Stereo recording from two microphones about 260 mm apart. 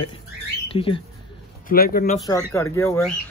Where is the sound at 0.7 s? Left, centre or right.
Centre.